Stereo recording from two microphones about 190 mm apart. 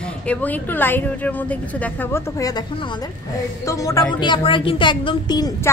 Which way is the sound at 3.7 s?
15° left (ahead or behind).